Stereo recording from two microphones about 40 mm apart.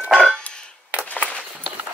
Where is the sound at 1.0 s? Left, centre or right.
Left.